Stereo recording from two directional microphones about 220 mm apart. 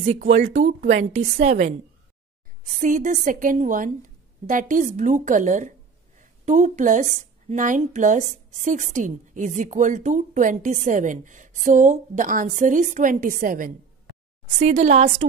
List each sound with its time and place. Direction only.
0.0 s a woman's voice: 30° right (ahead or behind)